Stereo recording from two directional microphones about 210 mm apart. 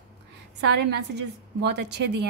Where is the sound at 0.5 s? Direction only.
55° right (ahead or behind).